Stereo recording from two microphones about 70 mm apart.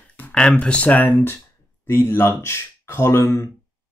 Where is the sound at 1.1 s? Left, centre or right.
Left.